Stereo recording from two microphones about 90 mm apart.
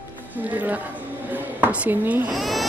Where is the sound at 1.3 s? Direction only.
20° right (ahead or behind).